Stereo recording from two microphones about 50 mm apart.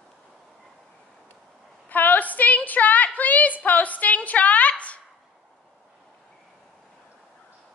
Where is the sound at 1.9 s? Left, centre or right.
Left.